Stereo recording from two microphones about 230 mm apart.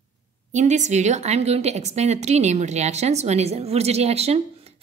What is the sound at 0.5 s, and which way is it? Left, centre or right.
A woman's voice, right.